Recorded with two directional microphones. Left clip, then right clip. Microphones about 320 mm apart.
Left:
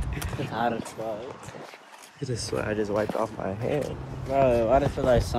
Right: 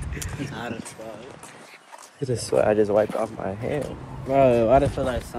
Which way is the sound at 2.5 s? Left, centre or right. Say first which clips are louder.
Right 9 dB; centre.